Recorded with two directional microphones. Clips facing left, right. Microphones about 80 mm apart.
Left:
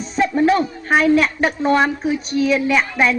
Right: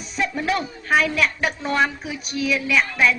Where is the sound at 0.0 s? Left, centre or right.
Left.